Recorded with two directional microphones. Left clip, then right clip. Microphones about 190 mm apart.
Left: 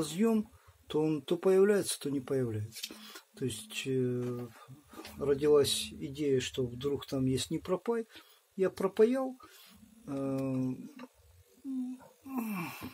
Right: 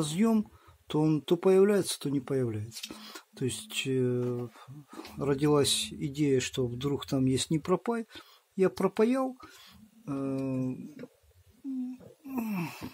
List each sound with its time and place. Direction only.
0.0 s speech: 25° right (ahead or behind)
12.3 s speech: 25° right (ahead or behind)